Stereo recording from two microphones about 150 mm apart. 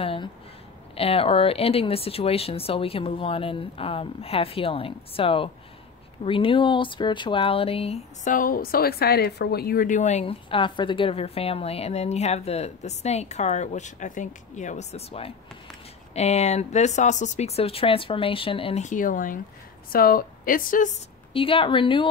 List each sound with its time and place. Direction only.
0.0 s speech: 40° left (ahead or behind)
8.2 s a woman's voice: 65° left (ahead or behind)
10.2 s a woman's voice: 35° left (ahead or behind)
18.9 s speech: 65° left (ahead or behind)
19.9 s a woman's voice: 75° left (ahead or behind); by 21.0 s 60° left (ahead or behind)
21.3 s speech: 35° left (ahead or behind)